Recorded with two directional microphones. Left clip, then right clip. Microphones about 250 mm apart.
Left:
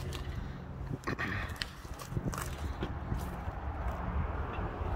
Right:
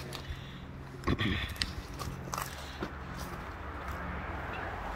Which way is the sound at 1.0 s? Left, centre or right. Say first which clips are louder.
Right 3 dB; centre.